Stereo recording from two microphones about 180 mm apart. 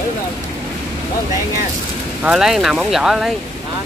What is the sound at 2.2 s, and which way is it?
Speech, 5° right (ahead or behind).